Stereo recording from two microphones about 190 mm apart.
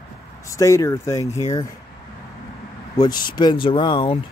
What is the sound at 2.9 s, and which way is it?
Speech, 20° left (ahead or behind).